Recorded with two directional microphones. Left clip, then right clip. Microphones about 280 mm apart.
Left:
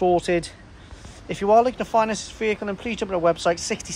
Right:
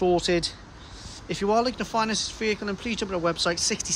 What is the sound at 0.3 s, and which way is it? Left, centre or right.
Speech, centre.